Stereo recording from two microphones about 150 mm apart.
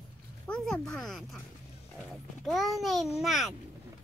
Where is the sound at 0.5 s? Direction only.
5° left (ahead or behind).